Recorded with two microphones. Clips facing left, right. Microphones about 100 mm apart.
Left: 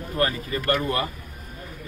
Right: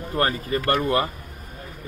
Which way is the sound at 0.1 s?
35° right (ahead or behind).